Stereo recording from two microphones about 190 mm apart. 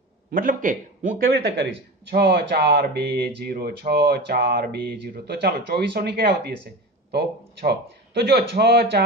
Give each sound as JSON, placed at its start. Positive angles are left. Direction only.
{"t": 0.3, "sound": "speech", "side_deg": -45}